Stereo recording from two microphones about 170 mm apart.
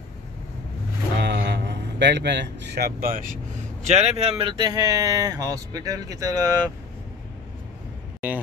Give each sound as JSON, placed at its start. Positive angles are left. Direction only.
{"t": 1.2, "sound": "a man's voice", "side_deg": -85}
{"t": 3.8, "sound": "speech", "side_deg": -40}